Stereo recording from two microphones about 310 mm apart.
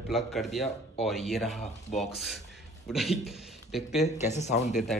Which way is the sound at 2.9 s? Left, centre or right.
Centre.